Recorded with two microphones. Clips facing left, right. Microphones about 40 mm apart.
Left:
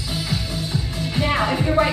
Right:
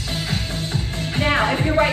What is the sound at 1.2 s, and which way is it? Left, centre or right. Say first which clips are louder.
Music: right 2 dB; right.